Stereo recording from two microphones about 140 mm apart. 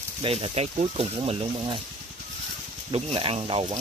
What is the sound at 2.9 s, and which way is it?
Speech, 45° right (ahead or behind).